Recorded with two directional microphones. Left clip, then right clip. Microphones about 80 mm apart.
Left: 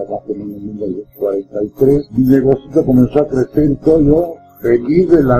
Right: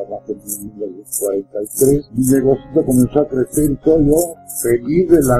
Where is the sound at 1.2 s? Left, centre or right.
Right.